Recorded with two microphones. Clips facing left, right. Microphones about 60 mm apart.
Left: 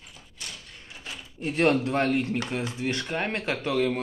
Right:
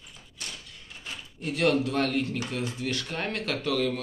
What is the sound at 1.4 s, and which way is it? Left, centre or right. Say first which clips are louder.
A man's voice: left 2 dB; left.